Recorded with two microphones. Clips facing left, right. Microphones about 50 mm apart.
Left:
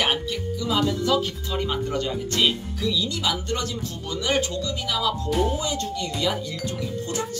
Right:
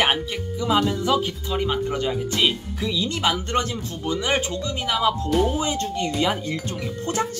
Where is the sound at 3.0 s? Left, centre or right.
Right.